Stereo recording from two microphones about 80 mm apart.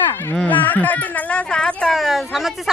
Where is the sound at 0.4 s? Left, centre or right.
Left.